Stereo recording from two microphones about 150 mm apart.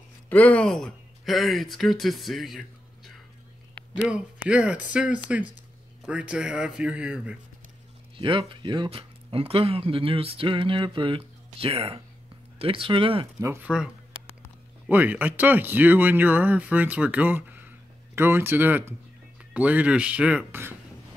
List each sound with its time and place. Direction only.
0.3 s speech: 10° left (ahead or behind); by 7.3 s 10° right (ahead or behind)
8.2 s speech: 35° right (ahead or behind)
13.4 s speech: 20° right (ahead or behind)
13.7 s speech: 5° right (ahead or behind)